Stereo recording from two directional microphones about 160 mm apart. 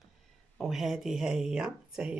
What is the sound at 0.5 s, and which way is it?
Speech, centre (ahead or behind).